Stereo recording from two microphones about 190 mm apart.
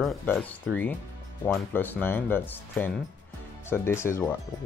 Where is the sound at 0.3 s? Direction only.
5° left (ahead or behind).